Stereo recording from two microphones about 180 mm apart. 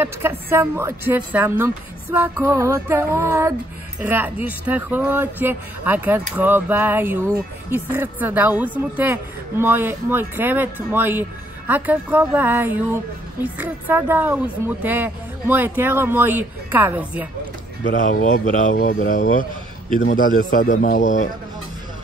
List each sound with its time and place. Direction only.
0.0 s speech: 15° right (ahead or behind)
18.2 s a man's voice: 45° left (ahead or behind)